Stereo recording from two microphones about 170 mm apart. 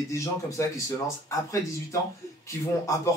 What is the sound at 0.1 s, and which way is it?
Speech, 15° left (ahead or behind).